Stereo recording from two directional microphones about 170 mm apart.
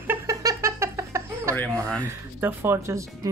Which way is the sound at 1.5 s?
5° left (ahead or behind).